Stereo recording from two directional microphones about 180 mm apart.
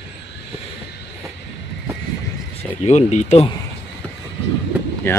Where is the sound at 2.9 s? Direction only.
40° left (ahead or behind).